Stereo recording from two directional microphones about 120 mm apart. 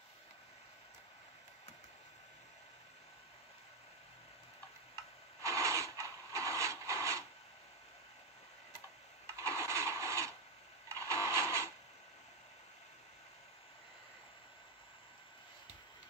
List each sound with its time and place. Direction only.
5.4 s rub: 25° right (ahead or behind)
9.4 s a sound: 25° right (ahead or behind)
10.9 s printer: 25° right (ahead or behind)